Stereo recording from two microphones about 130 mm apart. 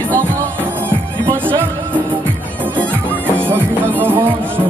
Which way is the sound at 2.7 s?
10° left (ahead or behind).